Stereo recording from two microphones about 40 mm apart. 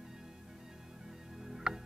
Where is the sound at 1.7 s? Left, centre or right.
Centre.